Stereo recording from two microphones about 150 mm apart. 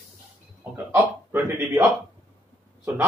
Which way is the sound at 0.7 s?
10° right (ahead or behind).